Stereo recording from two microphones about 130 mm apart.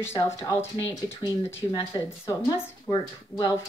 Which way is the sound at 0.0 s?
20° left (ahead or behind).